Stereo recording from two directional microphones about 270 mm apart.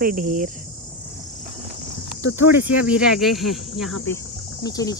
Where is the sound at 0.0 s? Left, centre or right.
Right.